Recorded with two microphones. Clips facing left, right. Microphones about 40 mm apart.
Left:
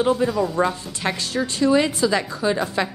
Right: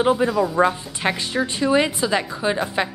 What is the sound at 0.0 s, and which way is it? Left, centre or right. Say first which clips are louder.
A woman's voice: right 1 dB; centre.